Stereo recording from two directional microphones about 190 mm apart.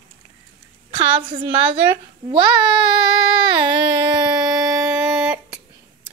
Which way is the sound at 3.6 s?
20° right (ahead or behind).